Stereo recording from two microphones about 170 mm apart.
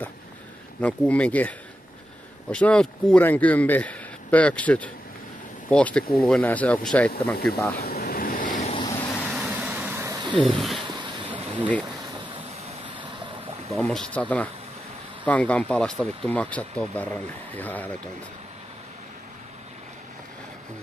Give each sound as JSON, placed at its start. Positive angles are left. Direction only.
{"t": 0.7, "sound": "speech", "side_deg": 5}
{"t": 2.5, "sound": "speech", "side_deg": 5}
{"t": 7.7, "sound": "vehicle", "side_deg": 65}
{"t": 8.7, "sound": "vehicle", "side_deg": 25}
{"t": 9.3, "sound": "vehicle", "side_deg": -5}
{"t": 10.5, "sound": "speech", "side_deg": 0}
{"t": 10.8, "sound": "boat", "side_deg": -25}
{"t": 11.2, "sound": "a sound", "side_deg": -10}
{"t": 13.7, "sound": "speech", "side_deg": 5}